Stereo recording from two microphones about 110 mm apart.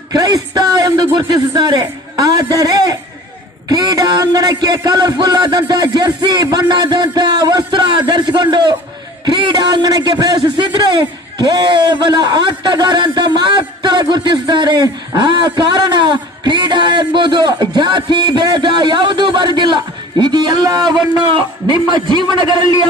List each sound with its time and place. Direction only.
0.1 s a man's voice: 35° right (ahead or behind)
21.3 s a man's voice: 50° right (ahead or behind)